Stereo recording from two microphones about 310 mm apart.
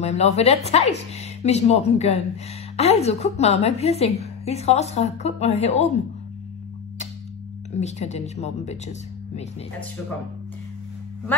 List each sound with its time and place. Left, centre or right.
0.0 s a woman's voice: left
7.7 s a woman's voice: left